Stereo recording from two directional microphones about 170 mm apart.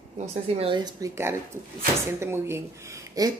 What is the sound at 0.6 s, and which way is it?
Speech, 30° right (ahead or behind).